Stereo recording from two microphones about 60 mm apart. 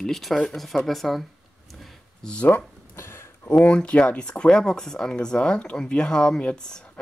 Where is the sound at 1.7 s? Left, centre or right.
Centre.